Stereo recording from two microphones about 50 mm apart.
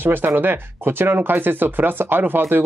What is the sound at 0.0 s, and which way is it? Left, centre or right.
Speech, right.